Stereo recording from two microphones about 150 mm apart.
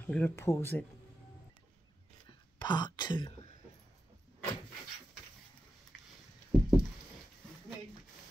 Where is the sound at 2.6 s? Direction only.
30° left (ahead or behind).